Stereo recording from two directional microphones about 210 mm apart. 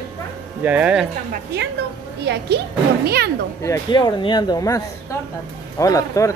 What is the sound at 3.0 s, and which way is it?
Speech, 50° right (ahead or behind).